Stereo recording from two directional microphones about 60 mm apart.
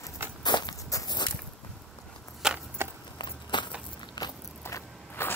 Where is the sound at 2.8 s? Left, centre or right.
Right.